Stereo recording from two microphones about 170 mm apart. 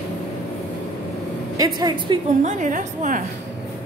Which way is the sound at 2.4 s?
45° right (ahead or behind).